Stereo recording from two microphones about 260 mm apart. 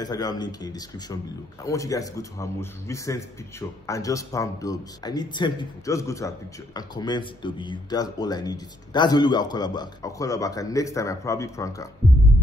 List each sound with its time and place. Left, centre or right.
0.0 s a man's voice: centre